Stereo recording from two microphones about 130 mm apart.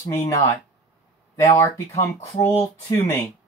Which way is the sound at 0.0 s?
25° left (ahead or behind).